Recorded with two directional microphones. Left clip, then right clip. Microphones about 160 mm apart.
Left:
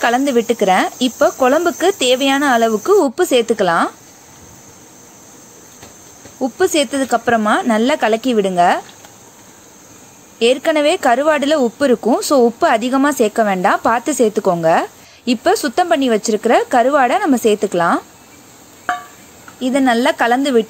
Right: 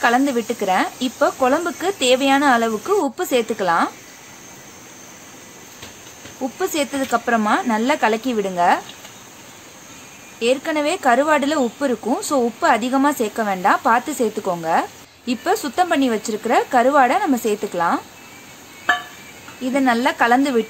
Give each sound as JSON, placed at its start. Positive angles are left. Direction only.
{"t": 0.0, "sound": "a woman's voice", "side_deg": 40}
{"t": 6.4, "sound": "a woman's voice", "side_deg": 35}
{"t": 10.4, "sound": "a woman's voice", "side_deg": 45}
{"t": 19.6, "sound": "a woman's voice", "side_deg": 35}